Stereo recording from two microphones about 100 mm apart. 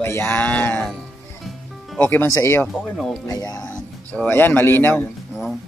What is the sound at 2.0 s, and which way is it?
Speech, 20° left (ahead or behind).